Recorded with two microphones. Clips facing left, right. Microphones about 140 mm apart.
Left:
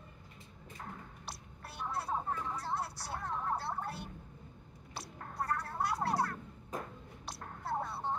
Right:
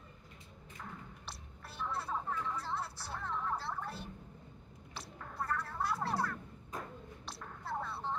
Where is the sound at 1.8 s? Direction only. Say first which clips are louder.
Left 2 dB; 35° left (ahead or behind).